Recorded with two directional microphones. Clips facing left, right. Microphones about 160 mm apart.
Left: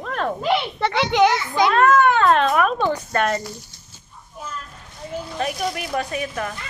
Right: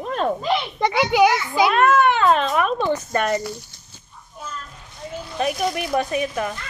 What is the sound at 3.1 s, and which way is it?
Speech, 10° right (ahead or behind).